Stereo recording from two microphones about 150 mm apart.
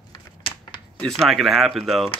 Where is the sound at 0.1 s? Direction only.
30° left (ahead or behind).